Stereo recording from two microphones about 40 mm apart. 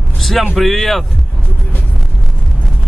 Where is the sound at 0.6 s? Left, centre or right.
Centre.